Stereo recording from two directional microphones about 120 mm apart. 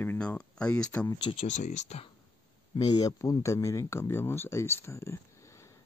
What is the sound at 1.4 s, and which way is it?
Speech, 75° left (ahead or behind).